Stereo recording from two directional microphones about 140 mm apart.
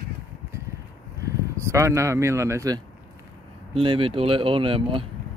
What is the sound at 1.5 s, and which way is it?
Speech, 20° right (ahead or behind).